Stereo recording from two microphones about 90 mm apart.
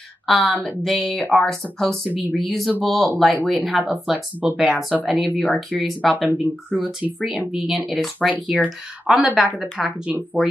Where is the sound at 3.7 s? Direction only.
15° right (ahead or behind).